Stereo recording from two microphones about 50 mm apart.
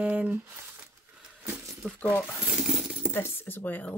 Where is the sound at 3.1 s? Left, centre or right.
Left.